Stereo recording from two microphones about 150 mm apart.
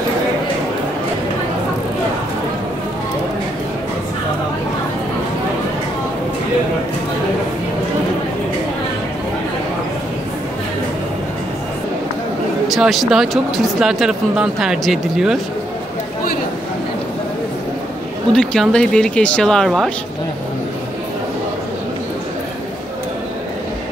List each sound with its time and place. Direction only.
12.6 s speech: centre (ahead or behind)
18.3 s speech: 5° left (ahead or behind)